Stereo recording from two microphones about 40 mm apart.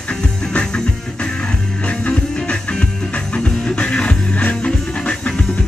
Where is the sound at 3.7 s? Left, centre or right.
Left.